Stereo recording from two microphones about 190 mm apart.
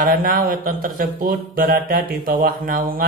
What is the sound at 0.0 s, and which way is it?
Speech, 50° right (ahead or behind).